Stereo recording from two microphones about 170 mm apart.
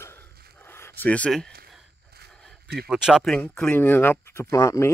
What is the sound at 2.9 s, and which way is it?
Speech, 5° right (ahead or behind).